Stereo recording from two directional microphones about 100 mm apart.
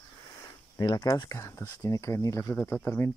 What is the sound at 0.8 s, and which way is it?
Speech, 40° left (ahead or behind).